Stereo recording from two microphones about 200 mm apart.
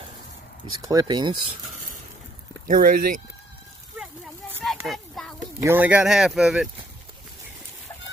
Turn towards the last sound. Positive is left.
turn(degrees=-5)  # may be behind; listen again after turning